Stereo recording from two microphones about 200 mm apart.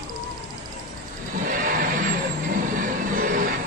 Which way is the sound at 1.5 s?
45° right (ahead or behind).